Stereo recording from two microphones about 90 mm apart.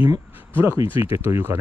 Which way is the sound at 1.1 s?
25° right (ahead or behind).